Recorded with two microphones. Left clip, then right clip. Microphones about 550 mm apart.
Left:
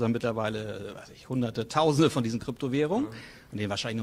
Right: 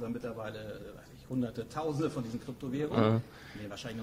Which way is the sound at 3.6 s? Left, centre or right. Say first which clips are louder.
Left 11 dB; left.